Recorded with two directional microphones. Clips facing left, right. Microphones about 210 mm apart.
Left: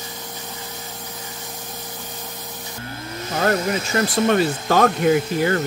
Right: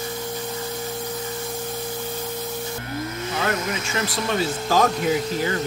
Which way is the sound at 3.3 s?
40° left (ahead or behind).